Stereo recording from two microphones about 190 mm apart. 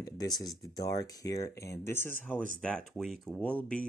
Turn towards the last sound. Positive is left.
turn(degrees=5)  # may be behind; listen again after turning